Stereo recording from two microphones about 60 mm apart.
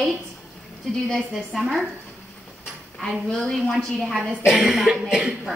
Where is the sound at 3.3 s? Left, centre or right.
Centre.